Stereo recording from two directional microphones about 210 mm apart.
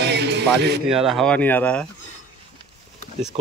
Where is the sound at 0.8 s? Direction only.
Centre (ahead or behind).